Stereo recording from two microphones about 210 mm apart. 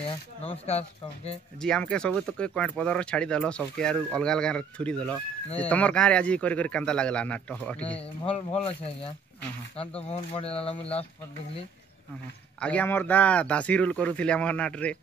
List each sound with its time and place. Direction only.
0.4 s speech: 30° left (ahead or behind)
1.6 s speech: 5° left (ahead or behind)
8.3 s speech: 25° left (ahead or behind)
12.5 s a man's voice: 5° left (ahead or behind)